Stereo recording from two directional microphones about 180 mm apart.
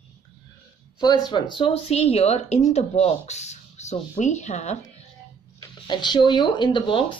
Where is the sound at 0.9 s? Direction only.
25° left (ahead or behind); by 4.7 s 40° left (ahead or behind).